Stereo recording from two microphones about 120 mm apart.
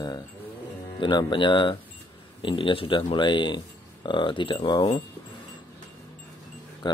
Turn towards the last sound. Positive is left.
turn(degrees=40)  # may be behind; listen again after turning